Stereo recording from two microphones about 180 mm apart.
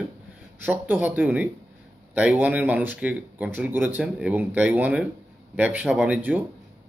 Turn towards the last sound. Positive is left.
turn(degrees=-10)  # may be behind; listen again after turning